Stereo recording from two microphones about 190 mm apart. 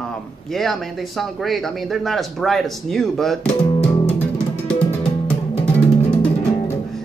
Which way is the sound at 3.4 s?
30° left (ahead or behind).